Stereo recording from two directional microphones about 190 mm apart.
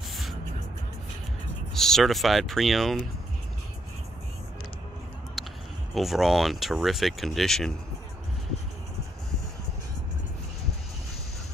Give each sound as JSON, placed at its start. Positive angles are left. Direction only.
{"t": 0.1, "sound": "music", "side_deg": 0}
{"t": 1.7, "sound": "speech", "side_deg": 0}
{"t": 5.4, "sound": "a sound", "side_deg": 0}
{"t": 5.9, "sound": "speech", "side_deg": 0}